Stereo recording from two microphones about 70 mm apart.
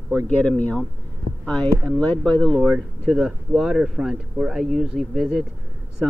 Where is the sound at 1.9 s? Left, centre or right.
Centre.